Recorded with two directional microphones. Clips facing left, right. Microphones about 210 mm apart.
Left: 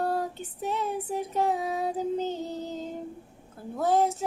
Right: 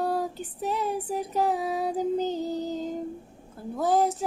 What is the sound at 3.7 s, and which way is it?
Child singing, 5° right (ahead or behind).